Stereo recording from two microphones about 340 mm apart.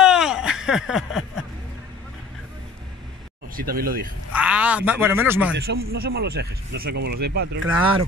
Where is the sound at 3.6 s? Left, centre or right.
Right.